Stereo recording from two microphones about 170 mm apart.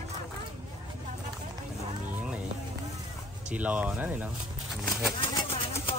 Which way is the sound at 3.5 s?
10° right (ahead or behind).